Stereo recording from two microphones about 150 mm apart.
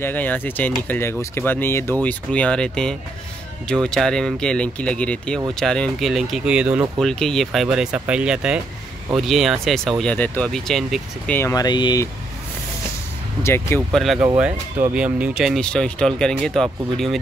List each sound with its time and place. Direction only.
0.0 s speech: 10° left (ahead or behind); by 6.9 s 10° right (ahead or behind)
7.0 s speech: 5° left (ahead or behind)
11.3 s speech: 20° left (ahead or behind)
13.4 s speech: 15° left (ahead or behind)
13.9 s speech: centre (ahead or behind)